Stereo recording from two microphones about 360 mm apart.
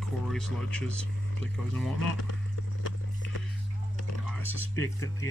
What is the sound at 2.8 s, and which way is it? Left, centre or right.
Clip-clop, left.